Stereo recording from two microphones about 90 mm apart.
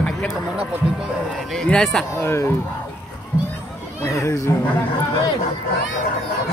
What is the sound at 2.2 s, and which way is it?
Speech, 30° left (ahead or behind).